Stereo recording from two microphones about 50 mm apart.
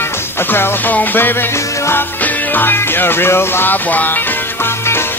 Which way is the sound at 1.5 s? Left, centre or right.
Left.